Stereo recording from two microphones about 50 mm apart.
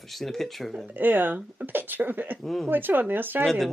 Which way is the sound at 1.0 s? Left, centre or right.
Right.